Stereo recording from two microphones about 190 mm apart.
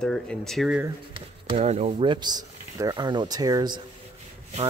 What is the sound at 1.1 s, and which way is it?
Speech, 30° right (ahead or behind).